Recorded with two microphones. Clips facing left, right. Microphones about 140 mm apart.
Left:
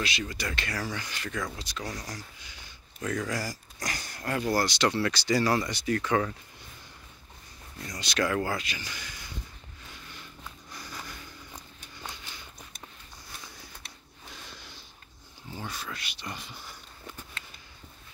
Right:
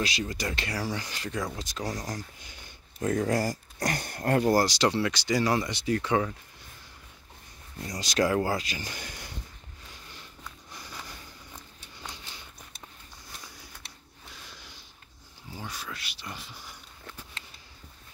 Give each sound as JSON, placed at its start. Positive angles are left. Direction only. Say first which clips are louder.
{"t": 0.0, "sound": "speech", "louder": "right 2 dB", "side_deg": -35}
{"t": 3.0, "sound": "speech", "louder": "right 4 dB", "side_deg": -35}
{"t": 3.3, "sound": "speech", "louder": "right 6 dB", "side_deg": -50}
{"t": 4.8, "sound": "speech", "louder": "right 1 dB", "side_deg": -20}
{"t": 7.8, "sound": "speech", "louder": "right 3 dB", "side_deg": -35}
{"t": 15.5, "sound": "speech", "louder": "left 1 dB", "side_deg": -10}